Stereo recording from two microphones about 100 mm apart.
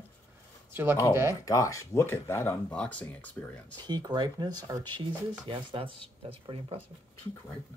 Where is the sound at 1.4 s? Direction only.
35° left (ahead or behind).